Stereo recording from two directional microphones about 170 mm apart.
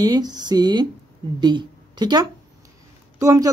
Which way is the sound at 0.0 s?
25° right (ahead or behind).